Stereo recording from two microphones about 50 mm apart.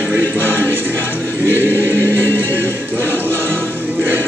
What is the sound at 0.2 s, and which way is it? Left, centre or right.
Music, left.